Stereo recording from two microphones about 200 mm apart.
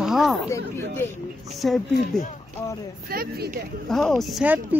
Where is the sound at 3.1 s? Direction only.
45° right (ahead or behind).